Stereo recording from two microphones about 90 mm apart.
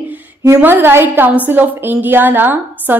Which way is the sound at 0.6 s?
20° right (ahead or behind).